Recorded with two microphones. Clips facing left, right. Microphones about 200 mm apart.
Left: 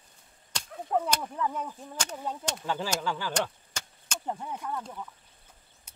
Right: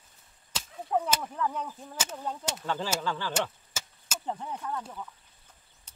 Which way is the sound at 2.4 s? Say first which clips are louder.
Left 1 dB; 5° right (ahead or behind).